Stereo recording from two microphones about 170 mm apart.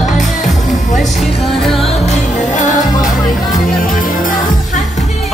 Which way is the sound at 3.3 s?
Centre (ahead or behind).